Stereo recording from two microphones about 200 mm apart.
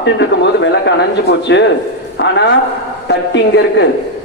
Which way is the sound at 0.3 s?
60° left (ahead or behind).